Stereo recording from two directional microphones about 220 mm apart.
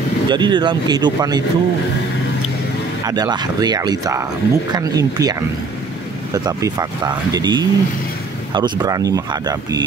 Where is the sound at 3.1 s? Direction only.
20° right (ahead or behind).